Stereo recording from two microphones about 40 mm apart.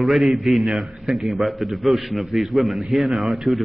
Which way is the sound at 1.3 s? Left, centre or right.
Right.